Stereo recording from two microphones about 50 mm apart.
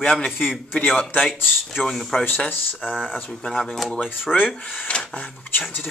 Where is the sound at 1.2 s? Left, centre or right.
Centre.